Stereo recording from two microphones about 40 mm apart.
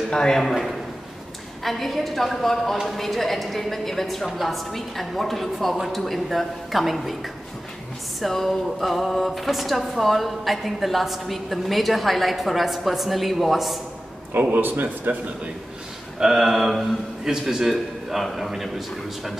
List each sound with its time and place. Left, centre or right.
0.1 s a man's voice: centre
1.6 s speech: centre
8.2 s speech: centre
14.5 s speech: right
16.2 s speech: centre